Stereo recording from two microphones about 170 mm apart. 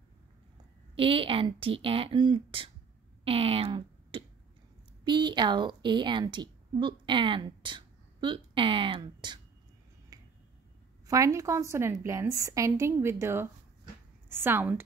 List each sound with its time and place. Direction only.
0.9 s a woman's voice: 30° right (ahead or behind)
11.1 s a woman's voice: 20° right (ahead or behind)